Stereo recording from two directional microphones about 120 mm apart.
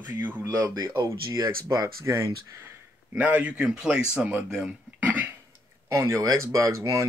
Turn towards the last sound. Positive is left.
turn(degrees=-25)  # may be behind; listen again after turning